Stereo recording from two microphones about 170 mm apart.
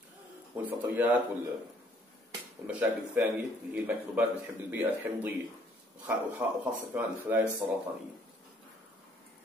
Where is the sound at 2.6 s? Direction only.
10° right (ahead or behind).